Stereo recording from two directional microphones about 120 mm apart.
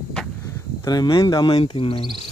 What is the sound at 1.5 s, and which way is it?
Speech, 50° left (ahead or behind).